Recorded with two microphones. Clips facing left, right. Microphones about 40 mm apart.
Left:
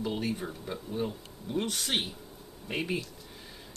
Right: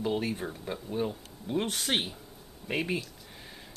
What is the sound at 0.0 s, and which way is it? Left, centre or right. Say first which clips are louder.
Speech: right 2 dB; centre.